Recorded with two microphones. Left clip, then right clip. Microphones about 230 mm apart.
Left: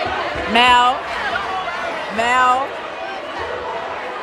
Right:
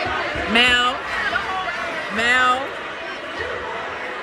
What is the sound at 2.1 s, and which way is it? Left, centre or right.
Speech, left.